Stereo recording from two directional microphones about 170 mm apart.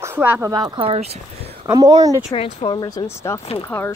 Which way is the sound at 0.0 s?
10° right (ahead or behind).